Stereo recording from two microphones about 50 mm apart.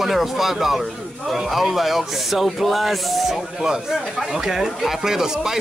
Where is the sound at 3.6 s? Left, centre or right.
Centre.